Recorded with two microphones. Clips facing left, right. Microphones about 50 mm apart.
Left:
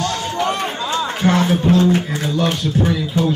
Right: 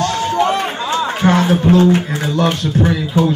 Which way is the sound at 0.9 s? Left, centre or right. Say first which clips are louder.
Right 3 dB; centre.